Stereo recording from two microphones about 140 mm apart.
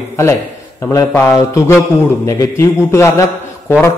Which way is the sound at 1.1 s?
20° left (ahead or behind).